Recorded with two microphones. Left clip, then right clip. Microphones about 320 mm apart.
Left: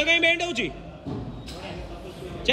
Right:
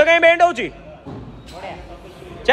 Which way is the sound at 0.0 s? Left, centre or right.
Centre.